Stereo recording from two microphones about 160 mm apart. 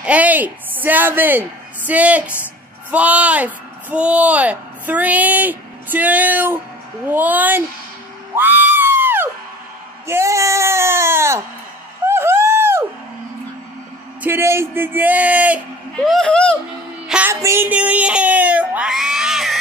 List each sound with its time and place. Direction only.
0.0 s speech: 10° right (ahead or behind)
8.4 s screaming: 10° right (ahead or behind)
10.0 s speech: 15° right (ahead or behind)
12.1 s owl: 15° right (ahead or behind)
14.2 s speech: 15° right (ahead or behind); by 16.5 s 5° left (ahead or behind)
17.1 s a woman's voice: 15° right (ahead or behind)